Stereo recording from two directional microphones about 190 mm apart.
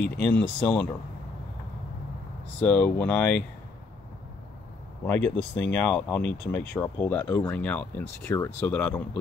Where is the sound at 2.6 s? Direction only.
10° left (ahead or behind).